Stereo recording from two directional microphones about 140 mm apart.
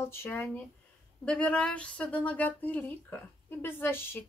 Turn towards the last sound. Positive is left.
turn(degrees=15)  # may be behind; listen again after turning